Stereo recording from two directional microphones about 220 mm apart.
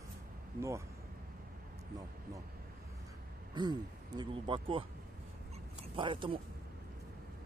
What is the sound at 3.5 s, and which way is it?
Speech, 20° right (ahead or behind).